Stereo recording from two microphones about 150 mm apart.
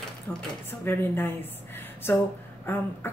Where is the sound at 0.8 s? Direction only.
15° left (ahead or behind).